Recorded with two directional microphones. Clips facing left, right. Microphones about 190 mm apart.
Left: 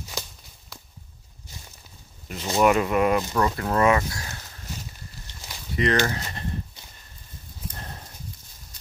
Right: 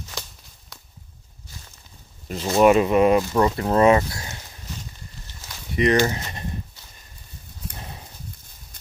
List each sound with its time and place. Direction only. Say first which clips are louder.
2.2 s speech: right 4 dB; 30° right (ahead or behind)
5.8 s speech: right 4 dB; 15° right (ahead or behind)
7.7 s horse: right 1 dB; 10° right (ahead or behind)